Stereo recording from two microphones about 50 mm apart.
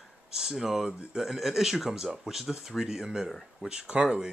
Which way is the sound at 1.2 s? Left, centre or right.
Centre.